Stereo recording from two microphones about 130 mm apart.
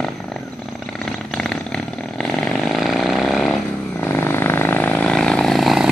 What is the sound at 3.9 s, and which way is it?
Vehicle, 15° left (ahead or behind).